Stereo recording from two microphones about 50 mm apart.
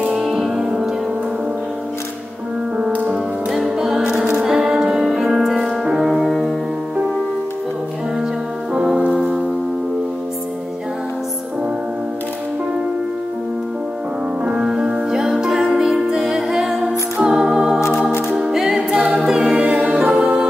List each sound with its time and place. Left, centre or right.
0.1 s music: centre
3.1 s music: centre
8.7 s music: centre
14.5 s music: centre
19.1 s a capella: centre
19.5 s music: right